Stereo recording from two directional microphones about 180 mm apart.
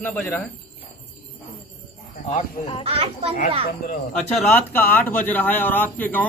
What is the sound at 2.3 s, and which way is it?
Speech, 30° left (ahead or behind).